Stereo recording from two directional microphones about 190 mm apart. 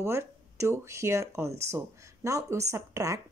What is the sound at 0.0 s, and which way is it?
Speech, 15° right (ahead or behind).